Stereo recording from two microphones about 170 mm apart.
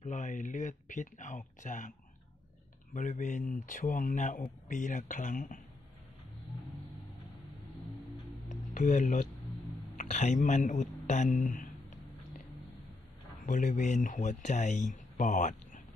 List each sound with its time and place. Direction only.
0.0 s speech: 45° left (ahead or behind)
2.9 s speech: 45° left (ahead or behind)
8.5 s a sound: 45° left (ahead or behind)
9.9 s speech: 40° left (ahead or behind)
13.5 s speech: 45° left (ahead or behind)